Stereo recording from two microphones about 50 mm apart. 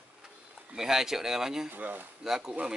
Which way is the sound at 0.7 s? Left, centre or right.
Centre.